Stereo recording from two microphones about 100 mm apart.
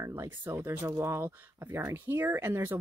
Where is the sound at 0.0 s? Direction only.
30° right (ahead or behind).